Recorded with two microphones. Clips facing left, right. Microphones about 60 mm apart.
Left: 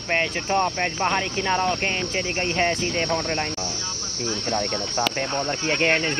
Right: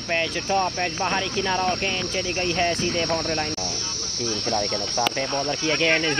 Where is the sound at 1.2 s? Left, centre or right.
Left.